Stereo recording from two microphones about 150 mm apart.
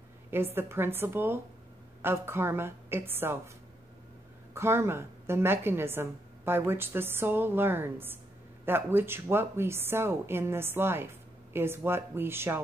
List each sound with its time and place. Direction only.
0.3 s speech: 15° right (ahead or behind)
4.6 s speech: 15° right (ahead or behind)